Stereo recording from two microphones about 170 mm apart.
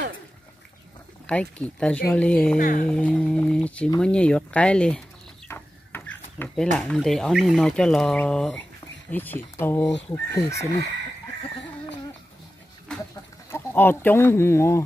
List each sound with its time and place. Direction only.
1.2 s speech: 5° left (ahead or behind)
2.6 s a sound: 55° left (ahead or behind)
2.9 s speech: 5° left (ahead or behind)
5.5 s mechanisms: 10° left (ahead or behind)
6.5 s speech: 5° left (ahead or behind)
13.1 s speech: 15° left (ahead or behind)